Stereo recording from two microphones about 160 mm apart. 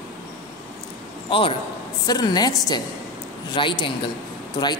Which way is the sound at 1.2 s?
35° left (ahead or behind).